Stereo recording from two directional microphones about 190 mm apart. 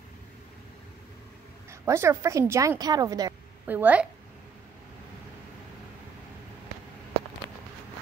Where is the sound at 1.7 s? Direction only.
15° right (ahead or behind).